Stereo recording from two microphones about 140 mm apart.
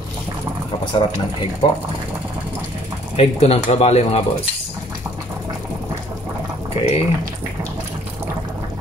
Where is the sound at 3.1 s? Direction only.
45° left (ahead or behind).